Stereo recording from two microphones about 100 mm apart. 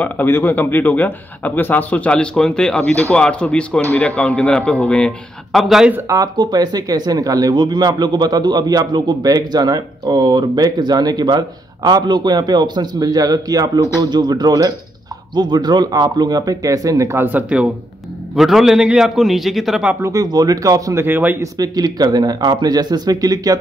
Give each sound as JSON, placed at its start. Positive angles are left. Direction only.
{"t": 0.0, "sound": "a man's voice", "side_deg": 20}
{"t": 5.6, "sound": "a man's voice", "side_deg": 0}
{"t": 6.0, "sound": "speech", "side_deg": -40}
{"t": 18.3, "sound": "a man's voice", "side_deg": -5}
{"t": 20.0, "sound": "speech", "side_deg": -35}
{"t": 21.0, "sound": "speech", "side_deg": -20}
{"t": 21.4, "sound": "speech", "side_deg": -40}